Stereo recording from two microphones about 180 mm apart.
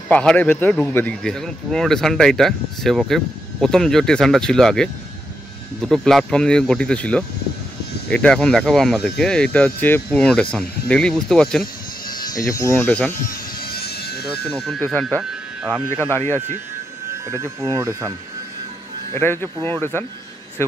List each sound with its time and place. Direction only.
0.1 s speech: 5° left (ahead or behind)
12.4 s speech: 15° left (ahead or behind)
13.6 s vehicle: 60° left (ahead or behind)
14.4 s speech: 5° left (ahead or behind)
17.1 s speech: 15° right (ahead or behind)
19.1 s speech: 10° left (ahead or behind)